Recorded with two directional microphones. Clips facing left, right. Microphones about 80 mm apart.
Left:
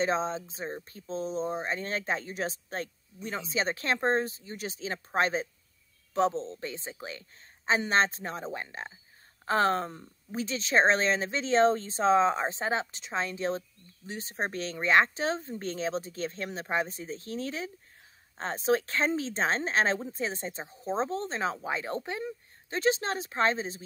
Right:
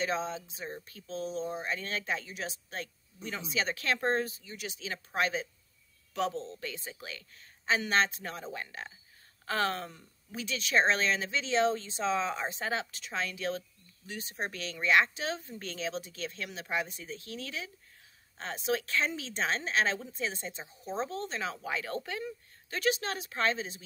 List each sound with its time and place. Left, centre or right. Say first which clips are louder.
0.0 s speech: left 4 dB; left